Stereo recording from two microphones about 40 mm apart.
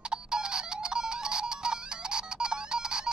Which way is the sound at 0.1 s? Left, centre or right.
Centre.